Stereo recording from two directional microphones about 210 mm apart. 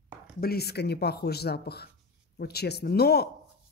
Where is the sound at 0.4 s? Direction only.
50° left (ahead or behind).